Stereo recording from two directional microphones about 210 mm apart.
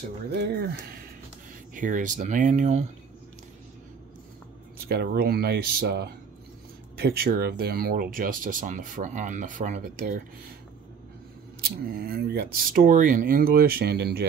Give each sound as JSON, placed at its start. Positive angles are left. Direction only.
{"t": 0.3, "sound": "speech", "side_deg": -50}
{"t": 4.8, "sound": "speech", "side_deg": -50}
{"t": 11.6, "sound": "speech", "side_deg": -50}